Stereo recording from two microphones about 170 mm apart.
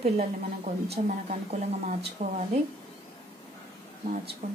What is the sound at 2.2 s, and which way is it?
Speech, 50° right (ahead or behind).